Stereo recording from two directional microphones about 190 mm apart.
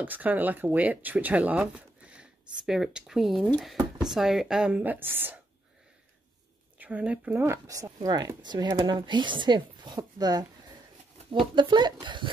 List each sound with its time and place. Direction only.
0.0 s speech: 10° right (ahead or behind)
6.8 s speech: 10° right (ahead or behind)
11.5 s speech: 25° right (ahead or behind)